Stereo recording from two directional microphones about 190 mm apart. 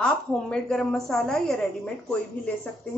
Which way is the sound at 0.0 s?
5° left (ahead or behind).